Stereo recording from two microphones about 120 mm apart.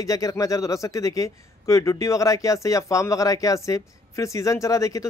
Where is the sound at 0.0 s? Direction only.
30° left (ahead or behind).